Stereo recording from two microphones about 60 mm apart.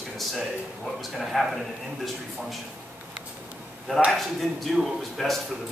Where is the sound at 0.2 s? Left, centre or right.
Centre.